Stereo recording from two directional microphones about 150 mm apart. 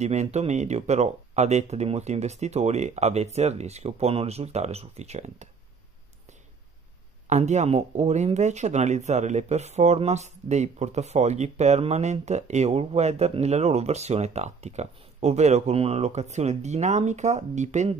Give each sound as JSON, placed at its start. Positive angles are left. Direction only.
{"t": 0.0, "sound": "speech", "side_deg": -50}
{"t": 7.2, "sound": "speech", "side_deg": -50}